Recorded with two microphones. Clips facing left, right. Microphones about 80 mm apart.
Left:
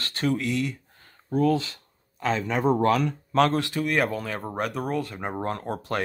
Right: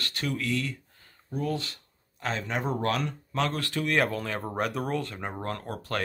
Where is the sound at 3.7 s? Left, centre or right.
Centre.